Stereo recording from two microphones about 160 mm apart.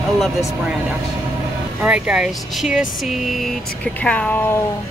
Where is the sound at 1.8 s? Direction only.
5° right (ahead or behind).